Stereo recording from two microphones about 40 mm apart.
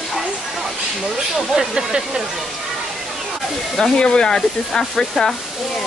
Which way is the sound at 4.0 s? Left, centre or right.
Left.